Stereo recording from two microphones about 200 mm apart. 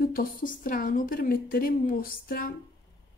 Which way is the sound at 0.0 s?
45° left (ahead or behind).